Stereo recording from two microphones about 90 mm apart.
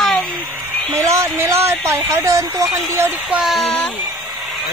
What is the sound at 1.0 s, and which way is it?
A woman's voice, 30° right (ahead or behind).